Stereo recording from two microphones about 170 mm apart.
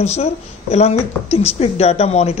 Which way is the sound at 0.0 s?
40° left (ahead or behind).